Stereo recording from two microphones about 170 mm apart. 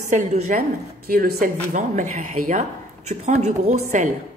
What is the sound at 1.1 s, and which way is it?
Speech, 60° right (ahead or behind).